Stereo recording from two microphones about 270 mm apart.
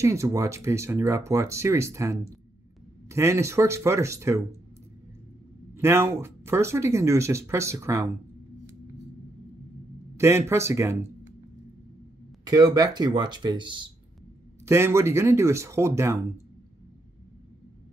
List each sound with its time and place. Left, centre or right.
0.0 s speech: centre
5.8 s speech: centre
10.1 s speech: centre
12.4 s speech: centre